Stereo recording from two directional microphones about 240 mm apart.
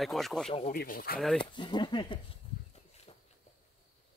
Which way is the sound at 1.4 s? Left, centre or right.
Centre.